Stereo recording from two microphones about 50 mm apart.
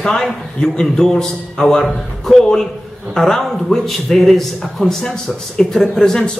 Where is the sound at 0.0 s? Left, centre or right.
Centre.